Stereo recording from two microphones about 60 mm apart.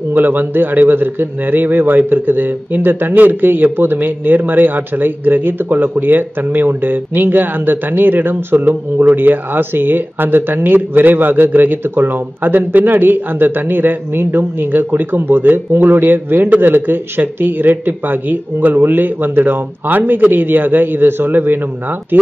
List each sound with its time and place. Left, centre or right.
0.1 s a man's voice: right